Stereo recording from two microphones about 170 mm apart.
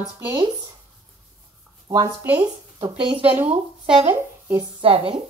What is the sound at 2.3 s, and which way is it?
A woman's voice, 30° right (ahead or behind).